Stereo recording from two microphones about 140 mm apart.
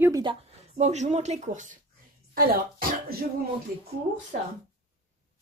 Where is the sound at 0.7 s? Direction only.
55° right (ahead or behind).